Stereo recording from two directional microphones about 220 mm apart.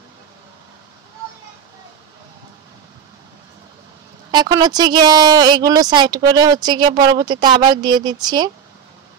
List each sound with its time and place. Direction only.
4.3 s speech: 20° right (ahead or behind)